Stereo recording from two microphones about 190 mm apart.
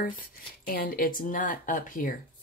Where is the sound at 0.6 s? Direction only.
50° left (ahead or behind).